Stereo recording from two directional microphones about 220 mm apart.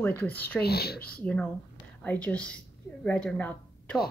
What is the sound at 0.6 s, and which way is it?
Speech, 45° left (ahead or behind).